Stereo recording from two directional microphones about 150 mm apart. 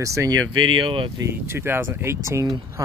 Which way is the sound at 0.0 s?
20° right (ahead or behind).